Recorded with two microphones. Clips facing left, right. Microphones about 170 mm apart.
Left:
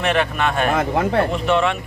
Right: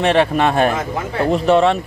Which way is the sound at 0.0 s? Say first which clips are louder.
Right 5 dB; 30° right (ahead or behind).